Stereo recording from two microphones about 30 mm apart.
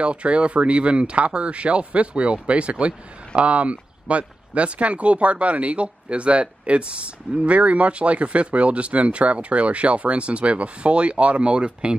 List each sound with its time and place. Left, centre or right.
0.0 s speech: right